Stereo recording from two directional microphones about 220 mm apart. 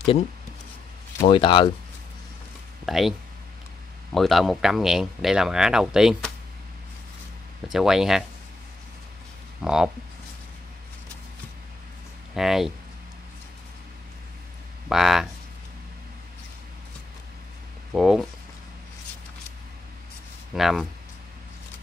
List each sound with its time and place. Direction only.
1.2 s speech: 20° left (ahead or behind)
2.8 s speech: centre (ahead or behind)
7.7 s speech: centre (ahead or behind)
9.6 s speech: centre (ahead or behind)
12.4 s speech: centre (ahead or behind)
14.9 s speech: centre (ahead or behind)
17.9 s speech: centre (ahead or behind)
20.5 s speech: centre (ahead or behind)